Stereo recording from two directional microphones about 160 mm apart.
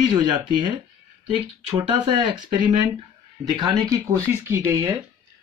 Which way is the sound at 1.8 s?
30° right (ahead or behind).